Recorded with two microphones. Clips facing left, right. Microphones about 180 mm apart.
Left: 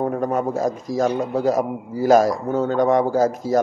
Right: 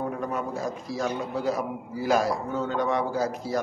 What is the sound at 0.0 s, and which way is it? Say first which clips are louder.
A man's voice: left 8 dB; 45° left (ahead or behind).